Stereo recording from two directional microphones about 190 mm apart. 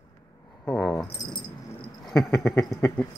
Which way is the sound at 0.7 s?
5° left (ahead or behind).